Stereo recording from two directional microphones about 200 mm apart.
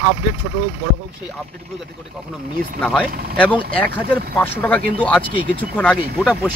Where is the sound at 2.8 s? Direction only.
5° left (ahead or behind).